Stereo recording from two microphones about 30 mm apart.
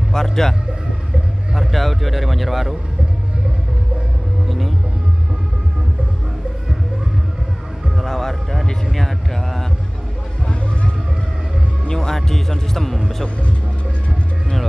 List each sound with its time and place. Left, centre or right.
0.1 s a man's voice: centre
1.7 s speech: centre
4.5 s vehicle: centre
8.0 s music: centre
8.9 s a man's voice: centre
11.9 s a man's voice: left